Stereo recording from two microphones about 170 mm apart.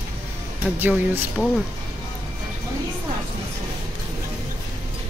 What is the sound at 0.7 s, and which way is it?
Speech, 10° right (ahead or behind).